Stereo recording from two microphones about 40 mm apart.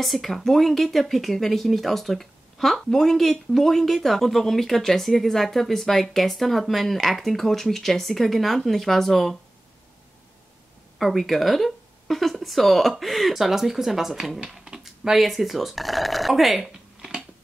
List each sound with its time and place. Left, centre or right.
0.0 s speech: centre
11.0 s speech: centre